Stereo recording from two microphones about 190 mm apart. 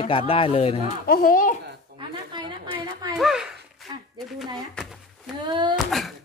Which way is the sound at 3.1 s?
5° right (ahead or behind).